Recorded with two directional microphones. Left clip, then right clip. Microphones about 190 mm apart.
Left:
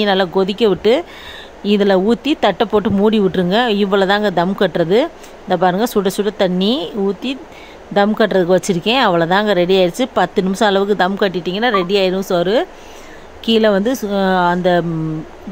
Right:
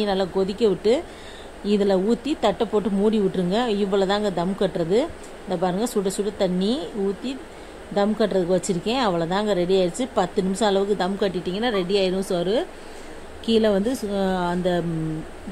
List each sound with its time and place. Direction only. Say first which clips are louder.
0.0 s speech: left 8 dB; 15° left (ahead or behind)